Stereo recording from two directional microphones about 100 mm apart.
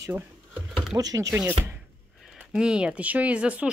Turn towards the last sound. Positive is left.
turn(degrees=-10)  # may be behind; listen again after turning